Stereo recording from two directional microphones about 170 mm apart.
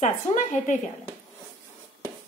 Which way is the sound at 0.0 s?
45° left (ahead or behind).